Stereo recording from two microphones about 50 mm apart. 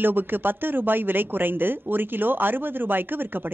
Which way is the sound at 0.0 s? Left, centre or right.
Right.